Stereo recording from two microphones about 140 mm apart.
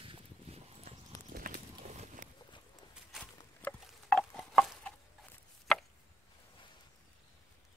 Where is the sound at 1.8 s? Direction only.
55° right (ahead or behind).